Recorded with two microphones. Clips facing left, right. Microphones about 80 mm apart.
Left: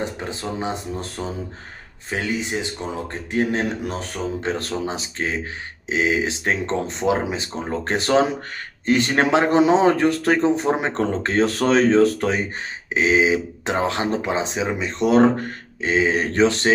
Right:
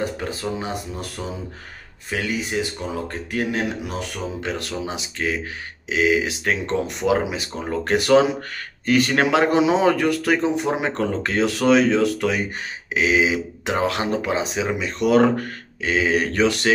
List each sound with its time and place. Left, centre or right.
0.0 s speech: left